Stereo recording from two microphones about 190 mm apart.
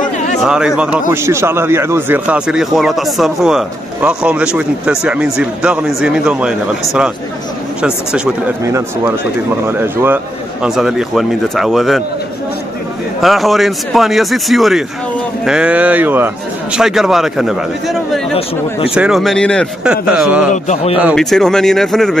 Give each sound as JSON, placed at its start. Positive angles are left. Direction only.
{"t": 0.4, "sound": "speech", "side_deg": -5}
{"t": 8.6, "sound": "speech", "side_deg": -15}
{"t": 13.2, "sound": "speech", "side_deg": 0}
{"t": 20.6, "sound": "a man's voice", "side_deg": 35}
{"t": 21.0, "sound": "speech", "side_deg": 0}